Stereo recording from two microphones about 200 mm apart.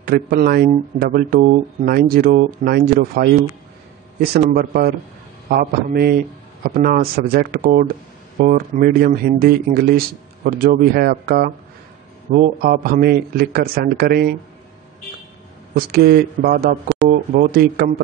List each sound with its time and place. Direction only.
0.0 s speech: 50° right (ahead or behind)
15.7 s speech: 50° right (ahead or behind)